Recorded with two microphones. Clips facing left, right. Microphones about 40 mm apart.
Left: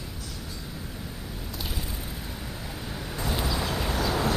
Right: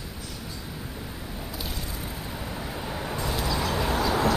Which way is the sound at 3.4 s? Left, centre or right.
Centre.